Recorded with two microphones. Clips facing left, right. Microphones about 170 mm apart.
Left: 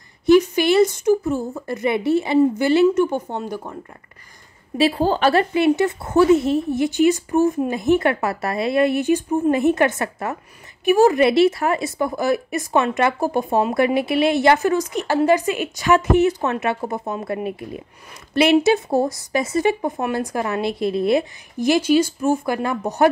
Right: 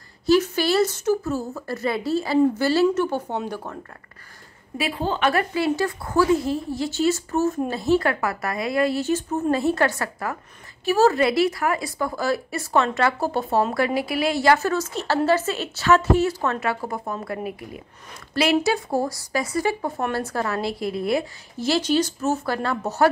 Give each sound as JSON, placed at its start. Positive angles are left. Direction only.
{"t": 0.3, "sound": "a woman's voice", "side_deg": 15}
{"t": 4.7, "sound": "speech", "side_deg": 35}